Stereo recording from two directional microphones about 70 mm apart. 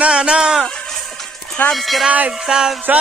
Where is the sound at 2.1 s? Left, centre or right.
Centre.